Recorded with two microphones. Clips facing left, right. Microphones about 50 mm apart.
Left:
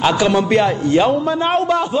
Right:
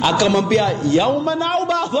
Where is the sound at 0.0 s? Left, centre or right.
Centre.